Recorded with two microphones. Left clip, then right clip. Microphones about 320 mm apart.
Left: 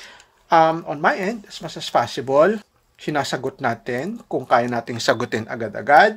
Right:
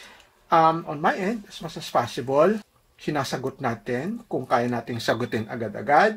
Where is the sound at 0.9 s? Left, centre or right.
Left.